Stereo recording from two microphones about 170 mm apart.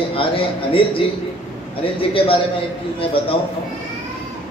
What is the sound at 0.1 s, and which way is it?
A man's voice, 30° left (ahead or behind).